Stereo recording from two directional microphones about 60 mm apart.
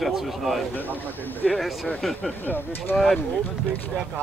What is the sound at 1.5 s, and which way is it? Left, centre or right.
Speech, centre.